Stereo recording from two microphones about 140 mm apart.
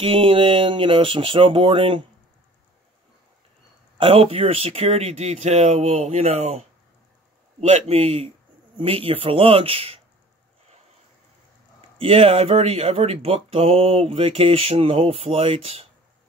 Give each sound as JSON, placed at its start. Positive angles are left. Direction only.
{"t": 0.0, "sound": "speech", "side_deg": -40}
{"t": 4.0, "sound": "speech", "side_deg": -40}
{"t": 7.6, "sound": "speech", "side_deg": -50}
{"t": 12.0, "sound": "speech", "side_deg": -45}